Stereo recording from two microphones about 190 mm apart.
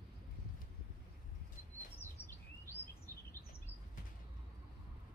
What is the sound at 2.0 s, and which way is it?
Bird vocalization, 10° left (ahead or behind).